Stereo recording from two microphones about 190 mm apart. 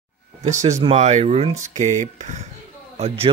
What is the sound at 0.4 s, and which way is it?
Speech, 40° right (ahead or behind).